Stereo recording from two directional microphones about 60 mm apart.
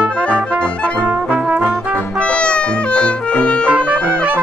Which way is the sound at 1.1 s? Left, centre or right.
Right.